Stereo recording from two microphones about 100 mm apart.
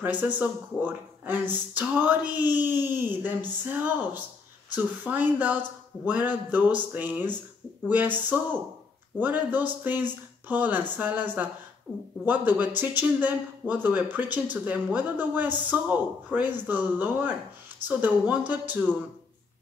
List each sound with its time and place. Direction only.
0.0 s speech: 15° right (ahead or behind)